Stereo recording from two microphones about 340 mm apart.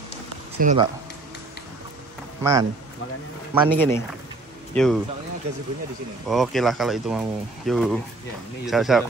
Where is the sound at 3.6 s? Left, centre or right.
Centre.